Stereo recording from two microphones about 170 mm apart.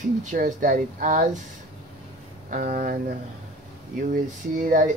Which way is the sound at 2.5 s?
55° right (ahead or behind).